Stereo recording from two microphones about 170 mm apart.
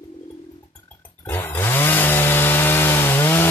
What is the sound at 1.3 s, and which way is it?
Chainsaw, 10° left (ahead or behind).